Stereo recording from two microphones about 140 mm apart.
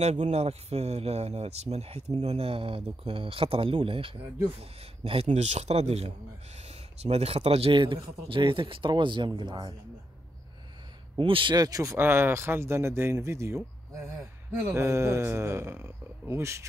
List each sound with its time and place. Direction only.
0.0 s speech: 55° right (ahead or behind); by 9.8 s 35° right (ahead or behind)
11.1 s speech: 40° right (ahead or behind); by 16.6 s 20° right (ahead or behind)